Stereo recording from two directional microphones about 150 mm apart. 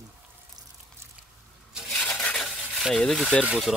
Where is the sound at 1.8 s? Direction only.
5° left (ahead or behind).